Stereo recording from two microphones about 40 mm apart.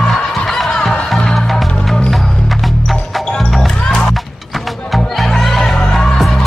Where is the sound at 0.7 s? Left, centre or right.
Centre.